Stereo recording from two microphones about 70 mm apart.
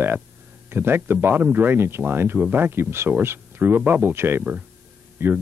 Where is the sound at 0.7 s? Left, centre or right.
Right.